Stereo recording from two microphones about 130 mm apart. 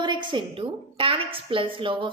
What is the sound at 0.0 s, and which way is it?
A woman's voice, 35° right (ahead or behind).